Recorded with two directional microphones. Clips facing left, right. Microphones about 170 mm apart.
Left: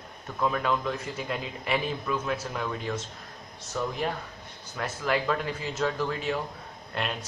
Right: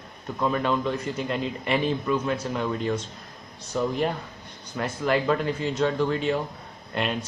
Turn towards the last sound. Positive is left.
turn(degrees=0)  # may be behind; listen again after turning